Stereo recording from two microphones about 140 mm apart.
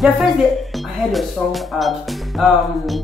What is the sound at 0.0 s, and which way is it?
Speech, centre (ahead or behind).